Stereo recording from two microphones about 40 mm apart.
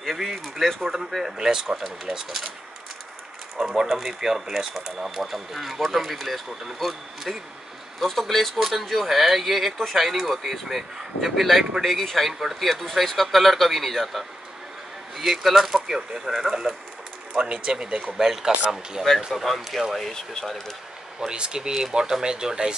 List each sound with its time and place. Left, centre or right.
0.0 s speech: centre
3.5 s speech: centre
17.4 s speech: right
18.1 s speech: centre
19.3 s speech: centre
20.0 s speech: centre
21.3 s speech: right